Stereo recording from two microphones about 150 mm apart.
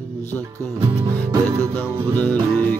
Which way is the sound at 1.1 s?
25° right (ahead or behind).